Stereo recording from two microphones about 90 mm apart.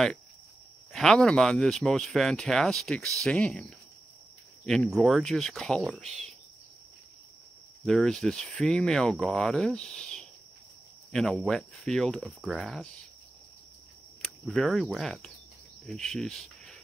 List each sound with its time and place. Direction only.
0.9 s speech: 5° left (ahead or behind)
4.6 s speech: centre (ahead or behind)
7.8 s speech: 5° left (ahead or behind)
14.4 s speech: centre (ahead or behind)